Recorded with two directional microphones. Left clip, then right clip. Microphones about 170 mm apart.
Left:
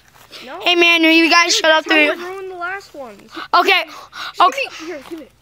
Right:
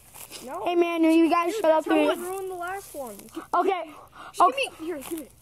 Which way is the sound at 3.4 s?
20° left (ahead or behind).